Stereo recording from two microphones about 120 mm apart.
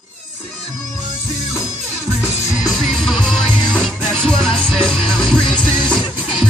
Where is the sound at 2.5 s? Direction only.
30° left (ahead or behind).